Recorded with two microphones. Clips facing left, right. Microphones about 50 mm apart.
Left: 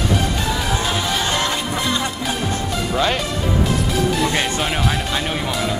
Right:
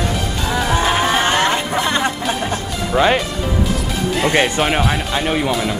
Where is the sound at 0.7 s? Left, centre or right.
Right.